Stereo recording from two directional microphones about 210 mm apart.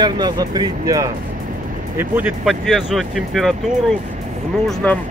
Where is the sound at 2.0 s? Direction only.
5° right (ahead or behind).